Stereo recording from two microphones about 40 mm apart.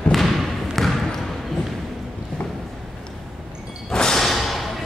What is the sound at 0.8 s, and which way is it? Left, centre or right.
Basketball bounce, centre.